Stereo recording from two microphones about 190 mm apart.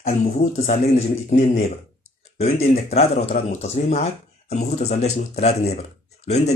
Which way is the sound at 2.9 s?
35° left (ahead or behind).